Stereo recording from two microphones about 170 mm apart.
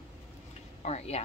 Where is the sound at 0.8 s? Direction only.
40° left (ahead or behind).